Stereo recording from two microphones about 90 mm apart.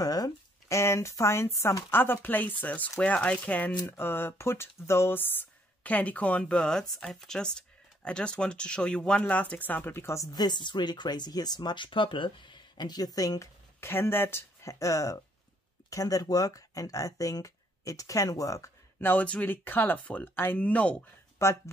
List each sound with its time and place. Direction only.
0.0 s speech: 45° left (ahead or behind)
13.7 s speech: 25° left (ahead or behind)
18.9 s speech: 20° left (ahead or behind)
21.4 s speech: 30° left (ahead or behind)